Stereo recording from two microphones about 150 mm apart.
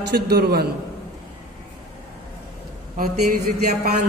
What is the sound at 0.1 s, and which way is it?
Speech, 90° right.